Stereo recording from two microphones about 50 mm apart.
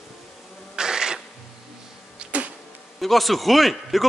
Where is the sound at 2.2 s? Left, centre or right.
Right.